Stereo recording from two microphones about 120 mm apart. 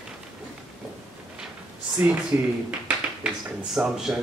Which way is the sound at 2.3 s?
20° right (ahead or behind).